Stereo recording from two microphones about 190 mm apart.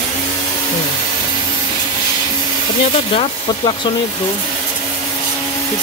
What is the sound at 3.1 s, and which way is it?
Speech, 25° left (ahead or behind).